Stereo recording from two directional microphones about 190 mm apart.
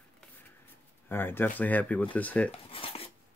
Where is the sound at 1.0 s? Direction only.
10° left (ahead or behind).